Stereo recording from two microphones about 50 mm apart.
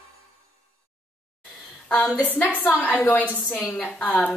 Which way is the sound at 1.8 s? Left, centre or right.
Left.